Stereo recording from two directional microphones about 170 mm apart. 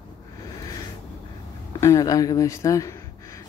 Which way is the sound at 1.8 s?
20° left (ahead or behind).